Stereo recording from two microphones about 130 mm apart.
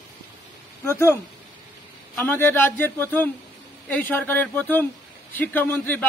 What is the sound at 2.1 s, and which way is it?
A man's voice, 15° left (ahead or behind).